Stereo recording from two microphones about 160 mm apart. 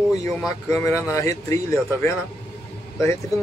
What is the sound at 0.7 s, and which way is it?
Speech, 20° left (ahead or behind).